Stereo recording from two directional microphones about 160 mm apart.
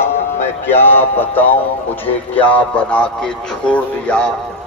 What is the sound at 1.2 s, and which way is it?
Speech, 10° left (ahead or behind).